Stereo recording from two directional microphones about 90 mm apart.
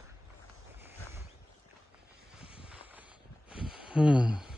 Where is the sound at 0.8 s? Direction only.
30° right (ahead or behind).